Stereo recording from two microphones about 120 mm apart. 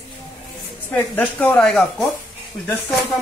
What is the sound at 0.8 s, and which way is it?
Speech, 15° left (ahead or behind).